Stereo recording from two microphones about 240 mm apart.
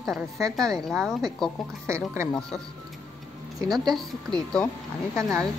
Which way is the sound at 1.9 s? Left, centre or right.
Centre.